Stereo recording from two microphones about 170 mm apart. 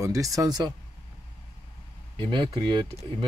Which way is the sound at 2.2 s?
25° right (ahead or behind).